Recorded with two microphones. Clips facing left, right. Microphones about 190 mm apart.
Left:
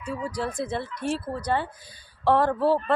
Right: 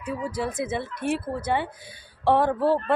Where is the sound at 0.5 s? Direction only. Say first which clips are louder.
Right 1 dB; 20° right (ahead or behind).